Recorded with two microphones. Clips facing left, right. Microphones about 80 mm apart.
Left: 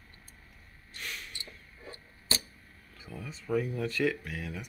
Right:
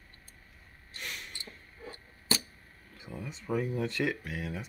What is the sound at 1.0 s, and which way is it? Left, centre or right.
Snort, right.